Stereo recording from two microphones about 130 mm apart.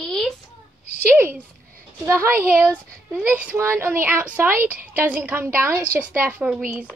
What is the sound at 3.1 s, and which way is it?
A woman's voice, 10° right (ahead or behind).